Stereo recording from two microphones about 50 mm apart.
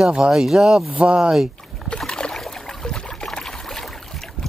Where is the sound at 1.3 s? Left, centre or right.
Centre.